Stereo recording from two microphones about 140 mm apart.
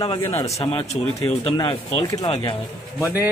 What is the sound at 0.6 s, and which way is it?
A man's voice, 40° left (ahead or behind).